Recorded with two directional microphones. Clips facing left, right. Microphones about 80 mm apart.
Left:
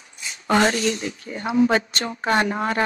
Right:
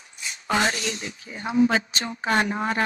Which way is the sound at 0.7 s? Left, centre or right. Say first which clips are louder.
Left 6 dB; left.